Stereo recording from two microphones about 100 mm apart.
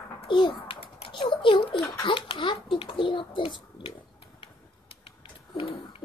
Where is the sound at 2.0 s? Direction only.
55° left (ahead or behind).